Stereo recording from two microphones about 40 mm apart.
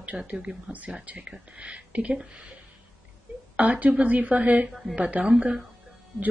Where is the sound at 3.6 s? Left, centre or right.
Right.